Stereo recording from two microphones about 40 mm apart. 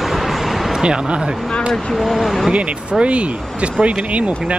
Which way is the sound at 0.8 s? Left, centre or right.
Right.